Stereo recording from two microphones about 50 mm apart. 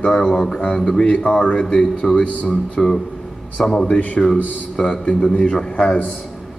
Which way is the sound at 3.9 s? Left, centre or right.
Left.